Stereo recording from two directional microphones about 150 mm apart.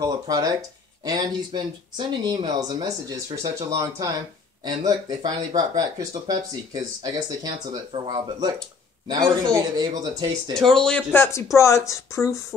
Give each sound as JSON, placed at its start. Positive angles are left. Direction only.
{"t": 0.0, "sound": "speech", "side_deg": -25}
{"t": 10.5, "sound": "speech", "side_deg": 5}
{"t": 11.1, "sound": "speech", "side_deg": 20}